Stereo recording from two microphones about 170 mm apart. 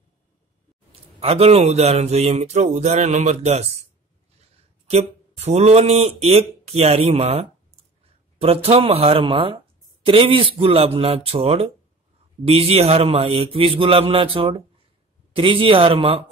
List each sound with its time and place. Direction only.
1.2 s speech: 35° right (ahead or behind)
4.8 s speech: 40° right (ahead or behind)